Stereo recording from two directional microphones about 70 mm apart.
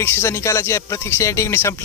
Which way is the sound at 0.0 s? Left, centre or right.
Left.